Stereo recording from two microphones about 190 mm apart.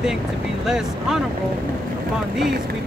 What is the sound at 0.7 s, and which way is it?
Speech, centre (ahead or behind).